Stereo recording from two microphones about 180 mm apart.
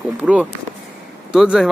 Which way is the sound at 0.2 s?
5° right (ahead or behind).